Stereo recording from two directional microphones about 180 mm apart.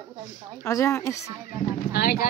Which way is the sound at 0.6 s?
15° left (ahead or behind).